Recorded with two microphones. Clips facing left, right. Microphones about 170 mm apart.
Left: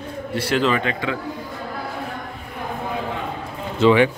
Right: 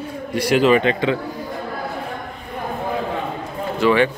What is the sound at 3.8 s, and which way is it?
Speech, 15° left (ahead or behind).